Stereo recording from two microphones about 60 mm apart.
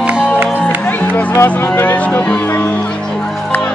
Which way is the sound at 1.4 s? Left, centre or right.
Left.